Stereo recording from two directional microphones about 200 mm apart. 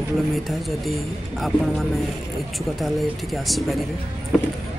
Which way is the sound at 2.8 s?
Centre (ahead or behind).